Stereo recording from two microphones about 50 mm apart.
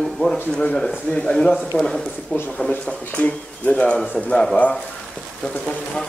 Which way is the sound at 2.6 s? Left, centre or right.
Left.